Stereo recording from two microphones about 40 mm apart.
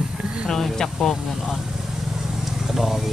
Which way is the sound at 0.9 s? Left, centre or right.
Centre.